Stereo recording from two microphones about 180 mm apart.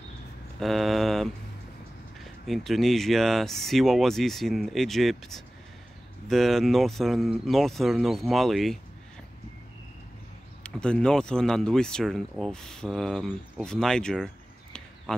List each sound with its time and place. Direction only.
0.6 s mantra: centre (ahead or behind)
2.1 s speech: centre (ahead or behind)
10.6 s speech: 5° left (ahead or behind)